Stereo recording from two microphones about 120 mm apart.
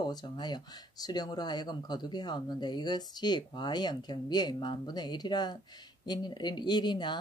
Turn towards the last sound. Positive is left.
turn(degrees=40)  # may be behind; listen again after turning